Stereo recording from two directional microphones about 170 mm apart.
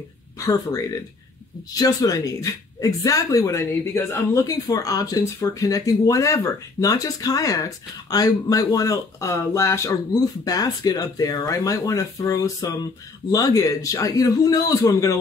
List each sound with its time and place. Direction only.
0.5 s speech: 20° left (ahead or behind)